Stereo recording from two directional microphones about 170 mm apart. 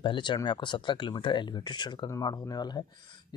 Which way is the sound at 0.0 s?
30° left (ahead or behind).